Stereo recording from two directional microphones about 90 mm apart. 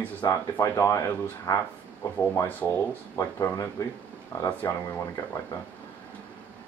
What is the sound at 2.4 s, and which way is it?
Speech, 20° left (ahead or behind).